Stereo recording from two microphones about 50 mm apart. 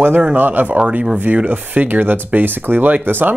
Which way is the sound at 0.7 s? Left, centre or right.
Right.